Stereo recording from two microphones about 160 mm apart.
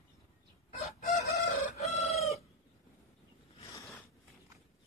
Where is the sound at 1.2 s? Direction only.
40° left (ahead or behind).